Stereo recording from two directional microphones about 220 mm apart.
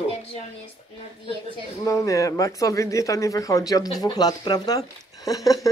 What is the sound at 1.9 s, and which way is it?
A woman's voice, 15° left (ahead or behind).